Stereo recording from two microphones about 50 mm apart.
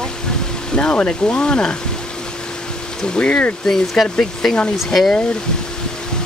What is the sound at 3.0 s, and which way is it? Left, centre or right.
Speech, left.